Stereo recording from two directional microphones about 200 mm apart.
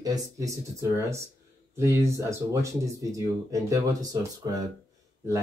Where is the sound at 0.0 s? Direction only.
15° right (ahead or behind).